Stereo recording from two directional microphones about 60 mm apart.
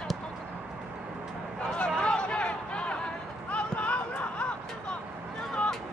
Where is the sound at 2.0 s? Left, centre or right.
Centre.